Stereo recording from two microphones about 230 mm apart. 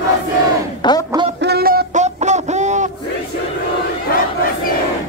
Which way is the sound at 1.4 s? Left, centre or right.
Right.